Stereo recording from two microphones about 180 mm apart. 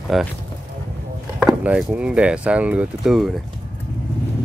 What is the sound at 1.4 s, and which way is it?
Speech, 5° right (ahead or behind).